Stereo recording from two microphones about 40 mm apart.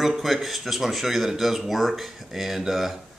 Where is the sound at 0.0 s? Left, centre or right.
Centre.